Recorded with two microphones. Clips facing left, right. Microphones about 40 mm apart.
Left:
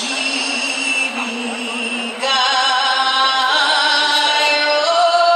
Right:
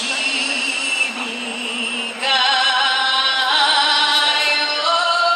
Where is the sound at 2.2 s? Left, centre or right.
Centre.